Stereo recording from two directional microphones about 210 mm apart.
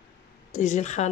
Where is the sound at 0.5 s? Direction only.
35° left (ahead or behind).